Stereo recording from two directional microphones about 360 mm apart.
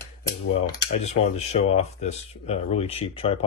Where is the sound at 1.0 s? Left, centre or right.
Centre.